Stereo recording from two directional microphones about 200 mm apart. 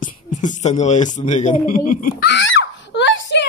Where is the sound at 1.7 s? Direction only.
45° left (ahead or behind); by 3.4 s 65° left (ahead or behind).